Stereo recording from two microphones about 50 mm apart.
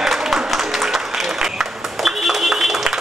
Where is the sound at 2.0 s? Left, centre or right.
Centre.